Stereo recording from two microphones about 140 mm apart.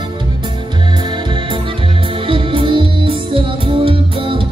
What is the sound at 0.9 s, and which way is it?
Music, 35° right (ahead or behind).